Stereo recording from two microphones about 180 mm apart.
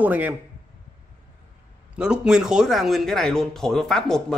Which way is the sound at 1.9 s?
5° right (ahead or behind).